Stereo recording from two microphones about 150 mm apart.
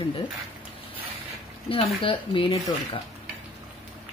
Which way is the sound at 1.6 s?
40° left (ahead or behind).